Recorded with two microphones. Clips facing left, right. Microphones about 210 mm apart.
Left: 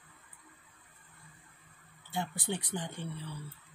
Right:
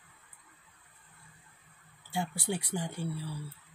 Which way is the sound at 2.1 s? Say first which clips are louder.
Right 2 dB; 10° right (ahead or behind).